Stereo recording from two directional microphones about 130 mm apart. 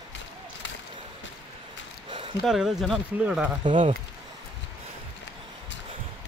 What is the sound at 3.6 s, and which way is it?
Speech, 40° right (ahead or behind).